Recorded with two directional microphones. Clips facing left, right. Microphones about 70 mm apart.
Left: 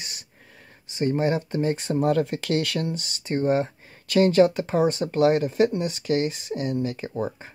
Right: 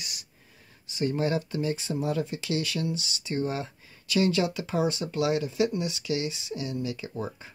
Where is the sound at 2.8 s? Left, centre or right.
Left.